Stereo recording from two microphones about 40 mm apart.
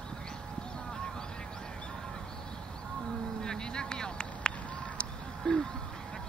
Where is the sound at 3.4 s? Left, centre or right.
Centre.